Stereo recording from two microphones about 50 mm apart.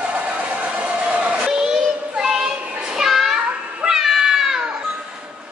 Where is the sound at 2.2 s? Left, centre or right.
Centre.